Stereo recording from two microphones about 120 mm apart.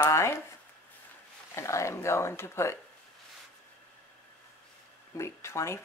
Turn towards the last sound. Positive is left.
turn(degrees=25)  # may be behind; listen again after turning